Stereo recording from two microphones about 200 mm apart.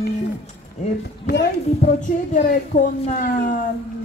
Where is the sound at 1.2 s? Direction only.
60° left (ahead or behind).